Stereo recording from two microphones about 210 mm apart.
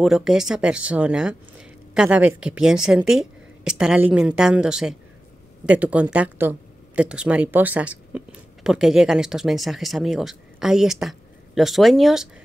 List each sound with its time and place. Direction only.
0.0 s speech: centre (ahead or behind)